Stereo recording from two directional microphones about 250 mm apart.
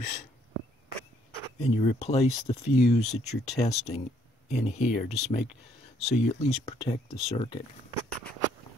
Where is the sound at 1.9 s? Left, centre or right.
Left.